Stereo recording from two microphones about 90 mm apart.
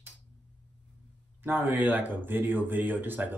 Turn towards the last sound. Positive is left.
turn(degrees=-20)  # may be behind; listen again after turning